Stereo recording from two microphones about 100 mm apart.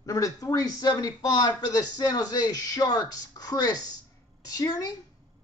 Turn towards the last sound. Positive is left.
turn(degrees=40)  # may be behind; listen again after turning